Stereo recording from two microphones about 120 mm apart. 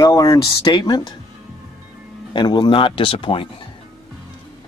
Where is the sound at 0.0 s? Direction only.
25° left (ahead or behind).